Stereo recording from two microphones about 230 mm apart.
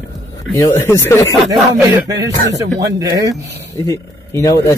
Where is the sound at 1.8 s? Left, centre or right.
Centre.